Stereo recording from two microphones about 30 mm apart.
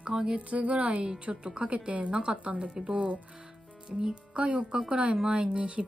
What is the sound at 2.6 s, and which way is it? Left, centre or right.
Speech, right.